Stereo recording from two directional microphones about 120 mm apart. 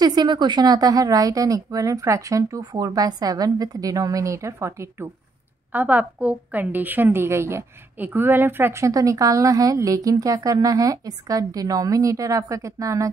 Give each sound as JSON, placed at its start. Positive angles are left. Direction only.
{"t": 0.0, "sound": "a woman's voice", "side_deg": -35}